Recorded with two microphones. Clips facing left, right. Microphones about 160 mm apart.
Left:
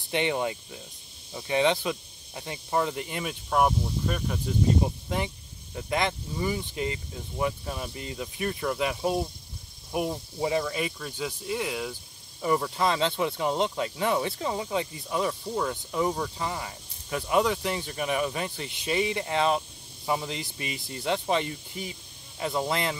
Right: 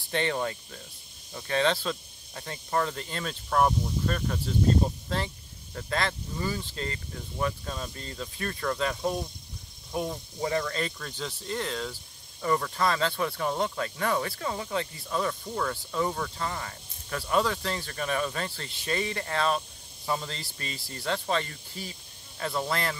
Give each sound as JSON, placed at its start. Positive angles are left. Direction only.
{"t": 0.1, "sound": "speech", "side_deg": 15}